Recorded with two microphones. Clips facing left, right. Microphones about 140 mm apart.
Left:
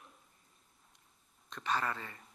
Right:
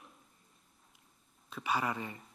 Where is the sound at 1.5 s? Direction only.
10° right (ahead or behind).